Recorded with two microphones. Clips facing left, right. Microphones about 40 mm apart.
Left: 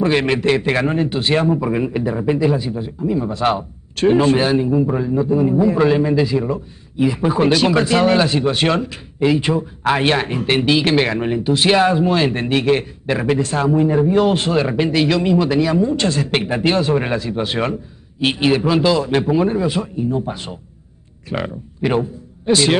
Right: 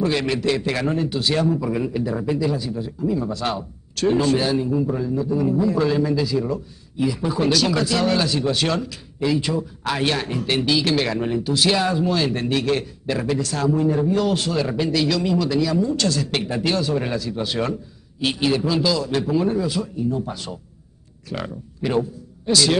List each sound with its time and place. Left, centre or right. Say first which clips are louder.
0.0 s a man's voice: left 5 dB; left